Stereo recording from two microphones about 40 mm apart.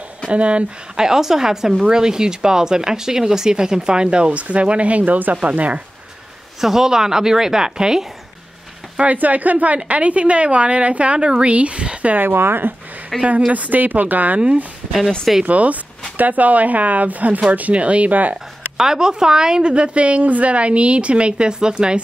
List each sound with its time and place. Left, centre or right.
0.3 s speech: right
0.9 s a woman's voice: centre; by 5.8 s right
6.6 s a woman's voice: centre
9.0 s a woman's voice: right
12.2 s speech: right
13.1 s speech: centre
13.5 s speech: right
15.4 s a woman's voice: right
18.8 s speech: centre